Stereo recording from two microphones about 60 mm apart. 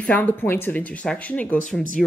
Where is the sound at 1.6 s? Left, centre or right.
Centre.